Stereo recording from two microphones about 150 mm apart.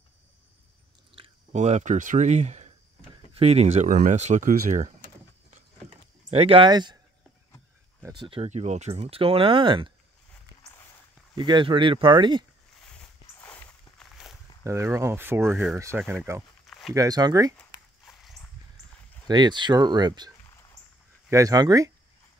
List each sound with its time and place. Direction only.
1.1 s speech: 45° right (ahead or behind)
4.1 s power windows: 50° right (ahead or behind)
6.3 s speech: 40° right (ahead or behind)
8.0 s speech: 30° right (ahead or behind)
8.5 s speech: 50° right (ahead or behind)
11.3 s speech: 30° right (ahead or behind)
12.7 s boat: 5° left (ahead or behind)
13.4 s walk: 15° left (ahead or behind)
14.6 s speech: 20° right (ahead or behind)
16.6 s a sound: centre (ahead or behind)
16.9 s speech: 25° right (ahead or behind)
18.0 s walk: centre (ahead or behind)
19.2 s speech: 30° right (ahead or behind)
21.3 s speech: 20° right (ahead or behind)